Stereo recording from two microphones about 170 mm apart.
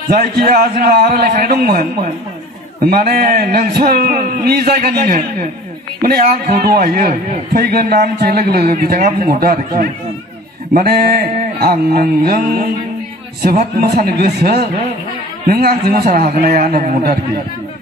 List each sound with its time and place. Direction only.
0.1 s a man's voice: 60° right (ahead or behind)
2.9 s a man's voice: 60° right (ahead or behind)
13.6 s a man's voice: 60° right (ahead or behind)